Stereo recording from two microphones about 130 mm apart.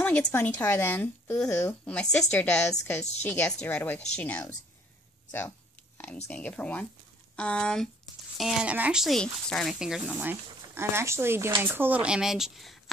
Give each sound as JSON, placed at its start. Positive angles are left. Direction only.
{"t": 0.0, "sound": "speech", "side_deg": 15}
{"t": 6.2, "sound": "speech", "side_deg": 10}
{"t": 10.1, "sound": "speech", "side_deg": -20}